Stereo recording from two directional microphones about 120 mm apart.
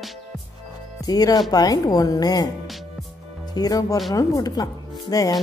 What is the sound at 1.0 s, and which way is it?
Speech, 30° left (ahead or behind).